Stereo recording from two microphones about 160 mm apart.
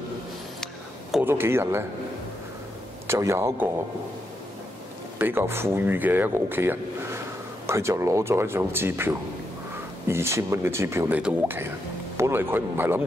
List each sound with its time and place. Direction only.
1.2 s speech: 15° right (ahead or behind)
3.1 s speech: 15° right (ahead or behind)
5.2 s speech: 15° right (ahead or behind)